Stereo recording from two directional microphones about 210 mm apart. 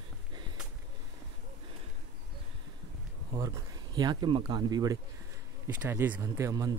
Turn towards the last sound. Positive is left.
turn(degrees=-15)  # may be behind; listen again after turning